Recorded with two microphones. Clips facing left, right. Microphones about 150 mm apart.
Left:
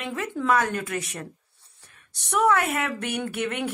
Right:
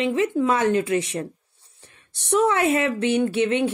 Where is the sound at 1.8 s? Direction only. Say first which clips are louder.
Right 4 dB; 25° right (ahead or behind).